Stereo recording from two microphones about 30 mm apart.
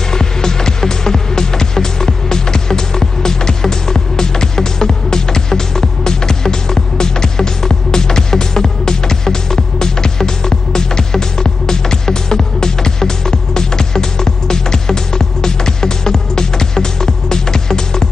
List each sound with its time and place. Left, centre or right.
0.1 s music: left